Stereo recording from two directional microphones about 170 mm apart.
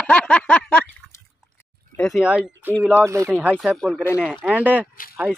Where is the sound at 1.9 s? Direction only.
5° left (ahead or behind).